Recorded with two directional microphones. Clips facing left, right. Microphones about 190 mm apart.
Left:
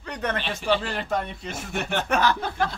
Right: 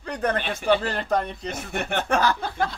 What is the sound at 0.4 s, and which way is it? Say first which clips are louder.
Speech: right 2 dB; 50° right (ahead or behind).